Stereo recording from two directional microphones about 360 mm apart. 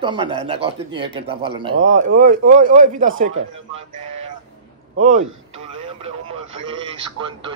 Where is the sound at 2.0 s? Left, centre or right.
Right.